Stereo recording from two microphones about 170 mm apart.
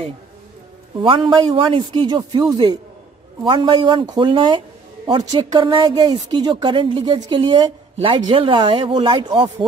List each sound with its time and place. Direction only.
0.9 s a woman's voice: 30° right (ahead or behind)